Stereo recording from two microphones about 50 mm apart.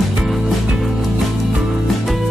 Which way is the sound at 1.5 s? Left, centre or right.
Centre.